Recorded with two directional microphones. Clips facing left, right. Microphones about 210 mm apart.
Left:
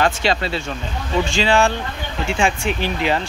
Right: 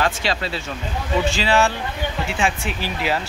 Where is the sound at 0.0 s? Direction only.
Centre (ahead or behind).